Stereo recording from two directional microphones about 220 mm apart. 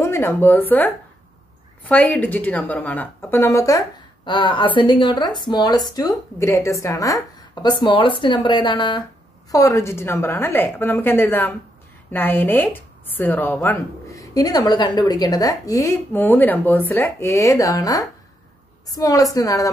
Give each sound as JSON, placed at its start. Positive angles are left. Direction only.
{"t": 0.0, "sound": "speech", "side_deg": 10}